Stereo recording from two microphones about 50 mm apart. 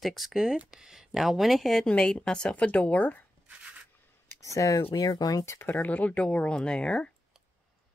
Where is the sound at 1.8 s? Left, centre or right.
Left.